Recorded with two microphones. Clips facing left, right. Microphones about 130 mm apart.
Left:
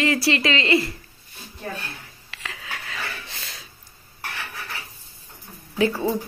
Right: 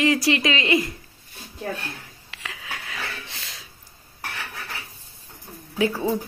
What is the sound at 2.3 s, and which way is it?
Wheeze, 15° right (ahead or behind).